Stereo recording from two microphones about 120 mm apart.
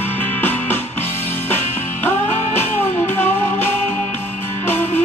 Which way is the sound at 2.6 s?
15° left (ahead or behind).